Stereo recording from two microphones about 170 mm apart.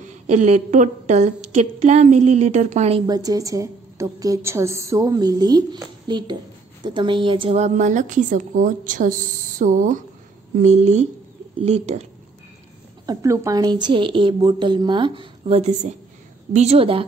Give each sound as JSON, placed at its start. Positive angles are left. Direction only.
{"t": 0.0, "sound": "a woman's voice", "side_deg": -45}
{"t": 3.1, "sound": "a woman's voice", "side_deg": -20}
{"t": 13.0, "sound": "a woman's voice", "side_deg": -20}